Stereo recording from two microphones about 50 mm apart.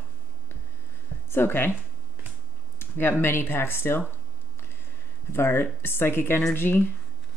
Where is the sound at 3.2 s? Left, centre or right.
Left.